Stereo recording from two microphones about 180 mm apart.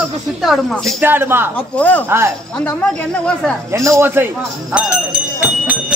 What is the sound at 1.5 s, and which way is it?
A man's voice, 10° left (ahead or behind).